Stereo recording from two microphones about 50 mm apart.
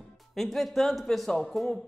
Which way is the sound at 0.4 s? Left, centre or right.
Centre.